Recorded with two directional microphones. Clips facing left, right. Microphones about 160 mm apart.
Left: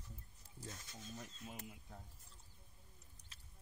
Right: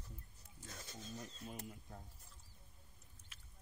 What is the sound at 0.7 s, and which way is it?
Speech, 35° right (ahead or behind).